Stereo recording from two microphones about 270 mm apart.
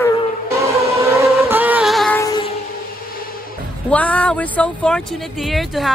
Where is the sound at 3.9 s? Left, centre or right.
Centre.